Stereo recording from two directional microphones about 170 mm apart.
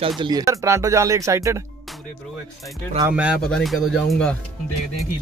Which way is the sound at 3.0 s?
10° right (ahead or behind).